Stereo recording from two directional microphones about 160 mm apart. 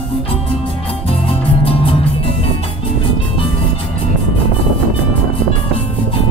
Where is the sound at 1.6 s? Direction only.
35° left (ahead or behind).